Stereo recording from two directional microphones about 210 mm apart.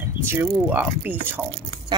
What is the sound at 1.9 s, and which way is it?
Speech, 20° right (ahead or behind).